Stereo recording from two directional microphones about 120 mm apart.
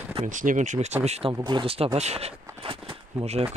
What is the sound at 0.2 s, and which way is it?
Speech, 90° right.